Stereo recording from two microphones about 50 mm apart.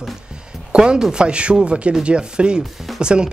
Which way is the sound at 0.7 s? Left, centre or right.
Centre.